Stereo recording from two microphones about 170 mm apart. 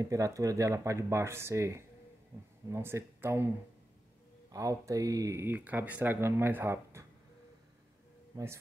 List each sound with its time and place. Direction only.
0.0 s speech: 20° right (ahead or behind)
4.5 s speech: 20° right (ahead or behind)